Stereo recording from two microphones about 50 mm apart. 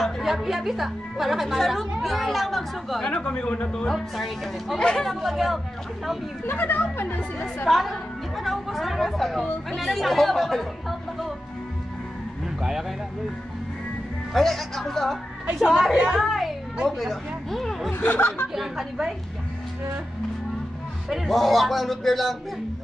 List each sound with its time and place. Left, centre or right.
0.0 s a woman's voice: centre
3.1 s a man's voice: centre
3.9 s a man's voice: centre
4.7 s a man's voice: centre
5.2 s a man's voice: centre
6.4 s speech: left
7.6 s a woman's voice: centre
14.3 s a man's voice: centre
15.6 s a woman's voice: centre
16.2 s a child's voice: centre
17.9 s speech: left
18.5 s a man's voice: centre
21.1 s a man's voice: centre